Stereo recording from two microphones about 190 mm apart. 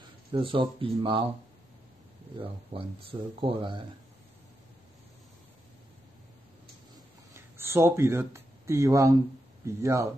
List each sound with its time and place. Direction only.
0.3 s speech: 25° right (ahead or behind)
2.3 s speech: 30° right (ahead or behind)
7.3 s speech: 15° right (ahead or behind)